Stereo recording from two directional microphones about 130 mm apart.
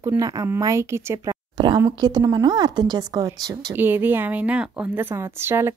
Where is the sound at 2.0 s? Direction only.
30° right (ahead or behind).